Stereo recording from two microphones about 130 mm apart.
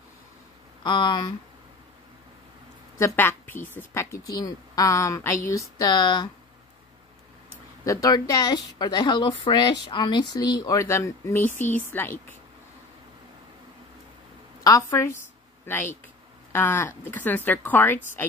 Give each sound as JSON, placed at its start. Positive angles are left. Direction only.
{"t": 0.8, "sound": "speech", "side_deg": 35}
{"t": 3.0, "sound": "a woman's voice", "side_deg": 15}
{"t": 7.8, "sound": "a woman's voice", "side_deg": 25}
{"t": 14.6, "sound": "a woman's voice", "side_deg": 25}